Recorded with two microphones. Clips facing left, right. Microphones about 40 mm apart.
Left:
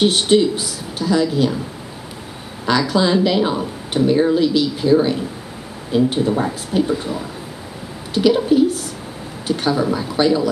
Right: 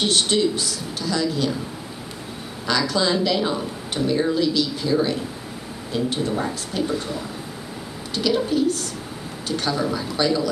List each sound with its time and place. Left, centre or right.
0.0 s speech: centre
2.8 s speech: centre